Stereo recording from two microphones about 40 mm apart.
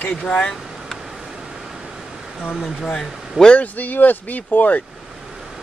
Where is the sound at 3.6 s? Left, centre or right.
Left.